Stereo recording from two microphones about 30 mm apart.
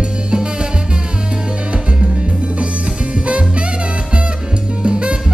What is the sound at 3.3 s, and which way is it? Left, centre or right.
Music, right.